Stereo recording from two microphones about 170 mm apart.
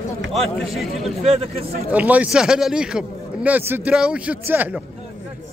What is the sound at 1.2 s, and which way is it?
Speech, 35° right (ahead or behind).